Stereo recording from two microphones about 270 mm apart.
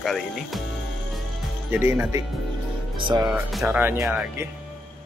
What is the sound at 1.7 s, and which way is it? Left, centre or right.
Speech, centre.